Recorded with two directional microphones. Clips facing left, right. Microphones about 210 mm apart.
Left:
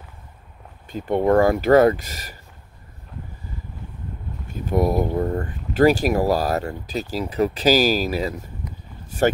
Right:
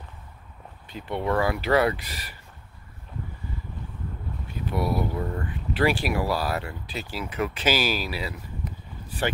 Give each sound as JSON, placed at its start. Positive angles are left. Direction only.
{"t": 0.8, "sound": "speech", "side_deg": 45}
{"t": 4.5, "sound": "speech", "side_deg": 45}